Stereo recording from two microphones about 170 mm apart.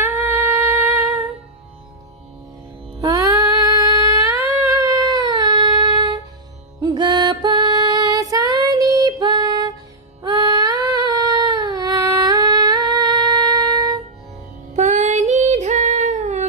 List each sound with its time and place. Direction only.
0.0 s humming: 15° right (ahead or behind)
3.0 s music: 20° right (ahead or behind)
4.3 s a sound: 20° right (ahead or behind)
6.8 s music: 25° right (ahead or behind)
10.2 s a sound: 20° right (ahead or behind)
14.7 s child singing: 45° right (ahead or behind)